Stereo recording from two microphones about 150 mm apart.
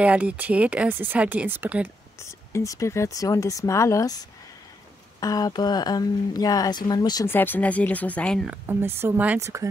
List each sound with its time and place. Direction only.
0.0 s speech: 10° right (ahead or behind)
2.1 s speech: 20° left (ahead or behind)
5.2 s speech: 25° left (ahead or behind)
7.2 s speech: 15° left (ahead or behind)
8.5 s speech: 15° right (ahead or behind)